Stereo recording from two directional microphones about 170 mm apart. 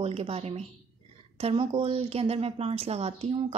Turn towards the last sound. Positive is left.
turn(degrees=-35)  # may be behind; listen again after turning